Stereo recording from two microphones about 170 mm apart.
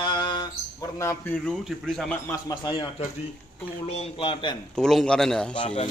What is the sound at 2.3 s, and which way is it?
Speech, 20° left (ahead or behind).